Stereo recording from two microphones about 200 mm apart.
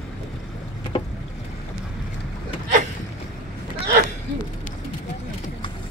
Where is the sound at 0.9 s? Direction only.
30° left (ahead or behind).